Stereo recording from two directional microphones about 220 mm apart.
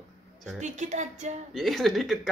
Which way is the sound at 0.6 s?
35° right (ahead or behind).